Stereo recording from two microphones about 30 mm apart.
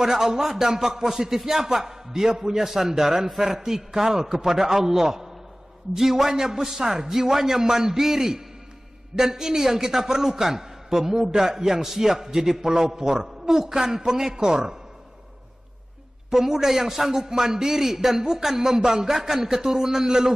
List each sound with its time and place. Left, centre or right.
0.0 s a man's voice: centre
16.3 s a man's voice: centre